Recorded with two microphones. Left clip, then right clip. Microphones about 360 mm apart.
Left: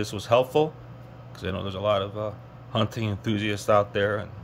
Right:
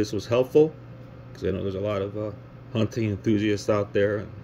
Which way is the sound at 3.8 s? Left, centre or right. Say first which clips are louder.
Right 1 dB; left.